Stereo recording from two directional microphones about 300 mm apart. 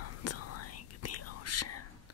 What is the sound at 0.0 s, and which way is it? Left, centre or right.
Whispering, left.